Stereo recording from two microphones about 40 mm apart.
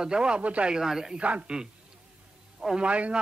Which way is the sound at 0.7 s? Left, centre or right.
Centre.